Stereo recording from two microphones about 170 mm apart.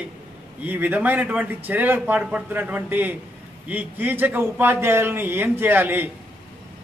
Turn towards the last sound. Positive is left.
turn(degrees=-10)  # may be behind; listen again after turning